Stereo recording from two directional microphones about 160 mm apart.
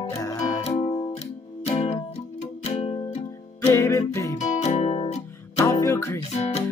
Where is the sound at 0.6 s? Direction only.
35° left (ahead or behind).